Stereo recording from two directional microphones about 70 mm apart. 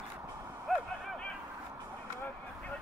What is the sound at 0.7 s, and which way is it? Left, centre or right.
Vehicle, centre.